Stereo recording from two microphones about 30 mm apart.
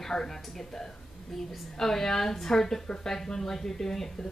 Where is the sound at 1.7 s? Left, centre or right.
Centre.